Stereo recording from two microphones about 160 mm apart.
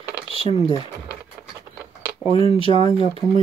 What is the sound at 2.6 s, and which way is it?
Speech, 35° right (ahead or behind).